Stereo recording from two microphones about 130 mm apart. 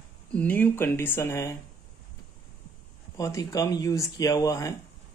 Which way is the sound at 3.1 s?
25° left (ahead or behind).